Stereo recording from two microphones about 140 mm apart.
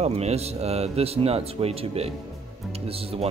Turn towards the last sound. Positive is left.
turn(degrees=-45)  # may be behind; listen again after turning